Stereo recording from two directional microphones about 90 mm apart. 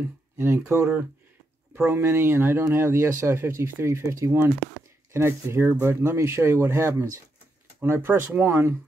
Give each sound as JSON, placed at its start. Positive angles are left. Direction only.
{"t": 0.4, "sound": "speech", "side_deg": -25}
{"t": 1.9, "sound": "speech", "side_deg": -25}